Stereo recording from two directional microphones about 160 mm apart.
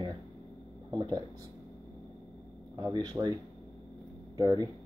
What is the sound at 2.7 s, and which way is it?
Speech, 25° right (ahead or behind).